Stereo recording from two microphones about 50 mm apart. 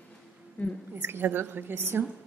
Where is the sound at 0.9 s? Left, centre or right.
Right.